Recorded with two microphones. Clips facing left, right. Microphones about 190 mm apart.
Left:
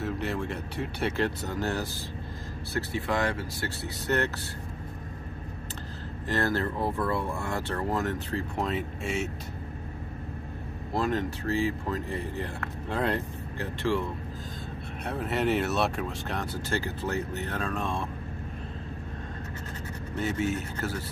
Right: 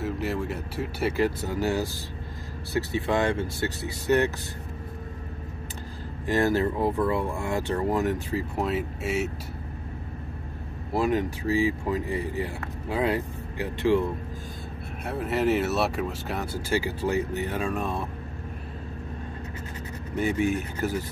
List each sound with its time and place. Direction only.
0.0 s speech: centre (ahead or behind)
6.2 s speech: 15° right (ahead or behind)
10.9 s speech: 10° right (ahead or behind)
15.0 s speech: centre (ahead or behind)
20.2 s speech: 15° right (ahead or behind)